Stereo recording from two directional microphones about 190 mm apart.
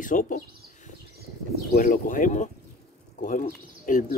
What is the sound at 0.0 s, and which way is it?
Speech, 45° left (ahead or behind).